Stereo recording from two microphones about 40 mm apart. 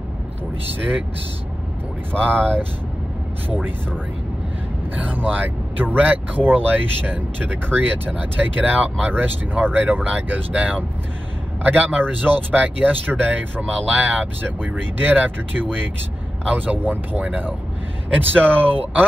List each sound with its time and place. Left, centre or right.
2.3 s speech: right
4.9 s speech: right
11.6 s speech: right
14.2 s speech: right